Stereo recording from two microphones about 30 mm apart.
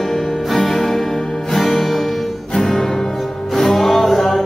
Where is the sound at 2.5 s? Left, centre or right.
Centre.